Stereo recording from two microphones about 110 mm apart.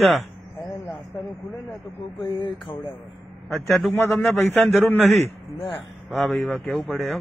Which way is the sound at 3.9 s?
20° left (ahead or behind).